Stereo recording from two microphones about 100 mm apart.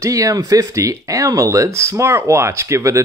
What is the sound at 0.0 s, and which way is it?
Speech, 35° right (ahead or behind).